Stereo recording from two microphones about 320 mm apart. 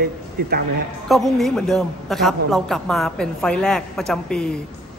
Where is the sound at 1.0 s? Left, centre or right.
Centre.